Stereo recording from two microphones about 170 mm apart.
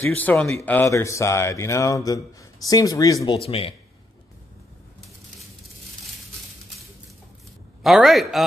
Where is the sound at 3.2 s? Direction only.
35° left (ahead or behind).